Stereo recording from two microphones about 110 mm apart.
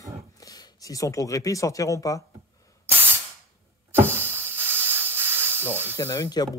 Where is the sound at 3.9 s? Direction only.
20° right (ahead or behind).